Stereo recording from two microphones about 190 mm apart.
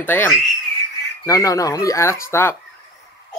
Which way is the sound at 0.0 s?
10° left (ahead or behind).